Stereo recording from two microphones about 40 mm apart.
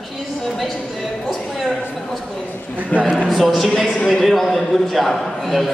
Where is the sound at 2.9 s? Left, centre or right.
Left.